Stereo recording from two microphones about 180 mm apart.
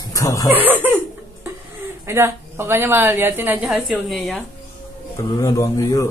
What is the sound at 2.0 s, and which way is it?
A woman's voice, 15° right (ahead or behind).